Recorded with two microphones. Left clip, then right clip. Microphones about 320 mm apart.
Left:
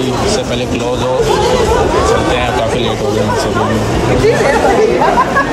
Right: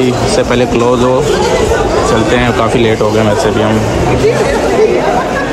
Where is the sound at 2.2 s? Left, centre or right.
Centre.